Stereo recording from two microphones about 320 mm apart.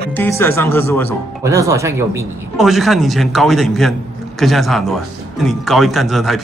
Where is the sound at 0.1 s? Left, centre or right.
Centre.